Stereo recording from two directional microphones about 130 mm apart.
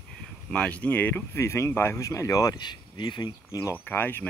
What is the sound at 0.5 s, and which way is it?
Speech, 10° left (ahead or behind).